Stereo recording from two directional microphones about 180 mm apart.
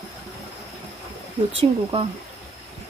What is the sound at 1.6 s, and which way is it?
Speech, 30° right (ahead or behind).